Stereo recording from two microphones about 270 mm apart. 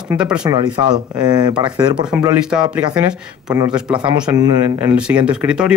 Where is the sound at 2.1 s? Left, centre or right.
Centre.